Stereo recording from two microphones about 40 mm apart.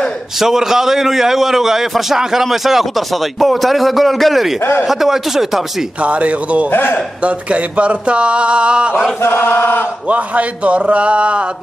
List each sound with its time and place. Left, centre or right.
0.4 s a man's voice: centre
6.0 s a man's voice: right
6.7 s chant: left
7.2 s mantra: right
9.2 s chant: left
10.0 s a man's voice: right